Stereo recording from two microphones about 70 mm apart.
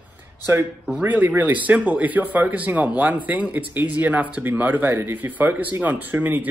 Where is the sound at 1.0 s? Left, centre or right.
Right.